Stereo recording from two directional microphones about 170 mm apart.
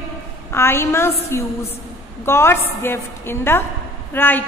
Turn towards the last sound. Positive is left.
turn(degrees=10)  # may be behind; listen again after turning